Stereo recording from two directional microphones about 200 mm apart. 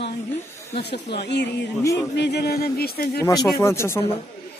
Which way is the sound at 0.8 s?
55° left (ahead or behind).